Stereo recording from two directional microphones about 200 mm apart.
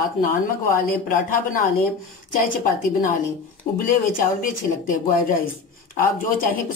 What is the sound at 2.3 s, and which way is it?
Speech, 40° left (ahead or behind).